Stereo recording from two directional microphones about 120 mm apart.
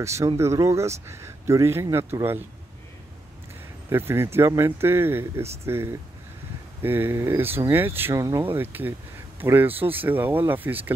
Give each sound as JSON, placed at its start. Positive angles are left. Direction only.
{"t": 0.0, "sound": "speech", "side_deg": -25}
{"t": 3.9, "sound": "speech", "side_deg": -20}
{"t": 8.2, "sound": "speech", "side_deg": -30}
{"t": 8.5, "sound": "speech", "side_deg": -15}